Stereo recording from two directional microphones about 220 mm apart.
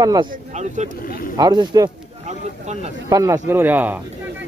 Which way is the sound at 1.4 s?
15° right (ahead or behind).